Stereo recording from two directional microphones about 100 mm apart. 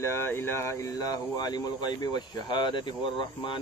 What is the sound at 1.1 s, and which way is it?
Speech, 45° left (ahead or behind).